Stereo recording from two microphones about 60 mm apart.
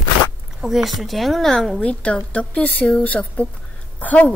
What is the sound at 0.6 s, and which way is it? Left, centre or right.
Speech, centre.